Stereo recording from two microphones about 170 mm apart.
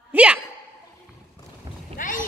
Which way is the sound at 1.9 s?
50° left (ahead or behind).